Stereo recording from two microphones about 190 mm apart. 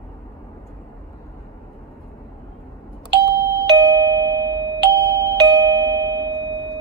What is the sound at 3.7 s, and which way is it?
Doorbell, 65° right (ahead or behind).